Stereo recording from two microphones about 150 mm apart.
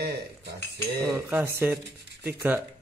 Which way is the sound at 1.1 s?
10° right (ahead or behind).